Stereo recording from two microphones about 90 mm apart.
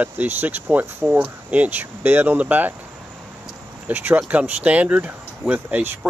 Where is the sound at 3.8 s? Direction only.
20° right (ahead or behind).